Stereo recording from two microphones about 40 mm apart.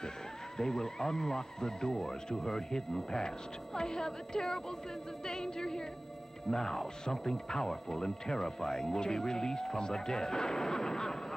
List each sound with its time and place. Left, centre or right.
0.6 s speech: centre